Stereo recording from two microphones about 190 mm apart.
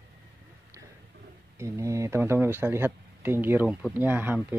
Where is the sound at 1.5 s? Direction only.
15° right (ahead or behind).